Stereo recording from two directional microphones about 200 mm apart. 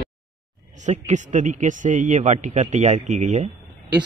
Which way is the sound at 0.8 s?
35° right (ahead or behind).